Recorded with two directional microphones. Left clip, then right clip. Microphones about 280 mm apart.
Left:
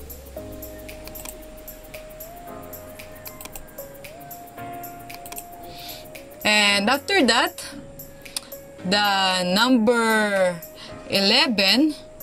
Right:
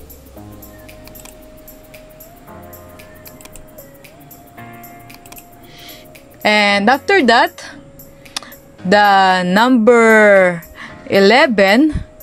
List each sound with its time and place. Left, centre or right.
6.4 s speech: centre